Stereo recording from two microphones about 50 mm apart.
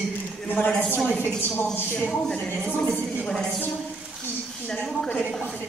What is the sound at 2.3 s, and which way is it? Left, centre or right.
A woman's voice, centre.